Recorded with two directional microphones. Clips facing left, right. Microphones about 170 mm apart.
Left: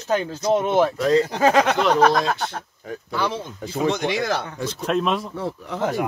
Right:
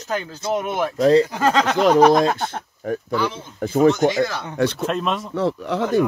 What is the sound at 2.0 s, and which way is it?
Speech, 15° right (ahead or behind).